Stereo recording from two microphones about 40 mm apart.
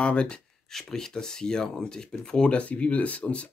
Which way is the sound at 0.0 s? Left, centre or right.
Left.